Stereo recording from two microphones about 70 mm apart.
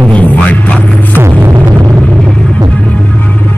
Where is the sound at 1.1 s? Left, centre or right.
Right.